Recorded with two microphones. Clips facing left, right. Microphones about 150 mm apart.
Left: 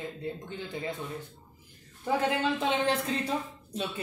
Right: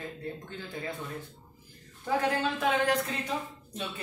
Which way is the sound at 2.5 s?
25° left (ahead or behind).